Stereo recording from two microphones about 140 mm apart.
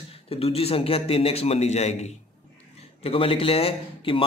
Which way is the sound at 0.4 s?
45° left (ahead or behind).